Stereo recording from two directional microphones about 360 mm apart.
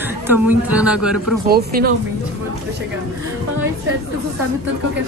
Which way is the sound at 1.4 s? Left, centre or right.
Right.